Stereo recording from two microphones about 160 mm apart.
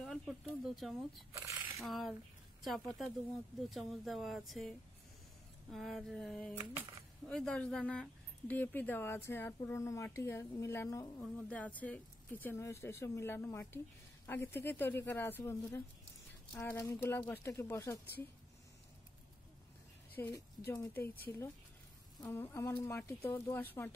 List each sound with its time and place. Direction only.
0.0 s speech: centre (ahead or behind)
1.3 s speech: 20° right (ahead or behind)
1.8 s speech: centre (ahead or behind); by 18.0 s 15° left (ahead or behind)
20.2 s speech: 15° left (ahead or behind)
22.2 s speech: 20° left (ahead or behind)